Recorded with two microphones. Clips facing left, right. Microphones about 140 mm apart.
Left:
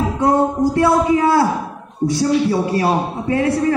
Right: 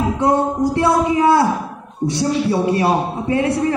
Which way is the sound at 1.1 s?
20° right (ahead or behind).